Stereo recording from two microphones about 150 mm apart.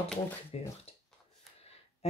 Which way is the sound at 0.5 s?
45° left (ahead or behind).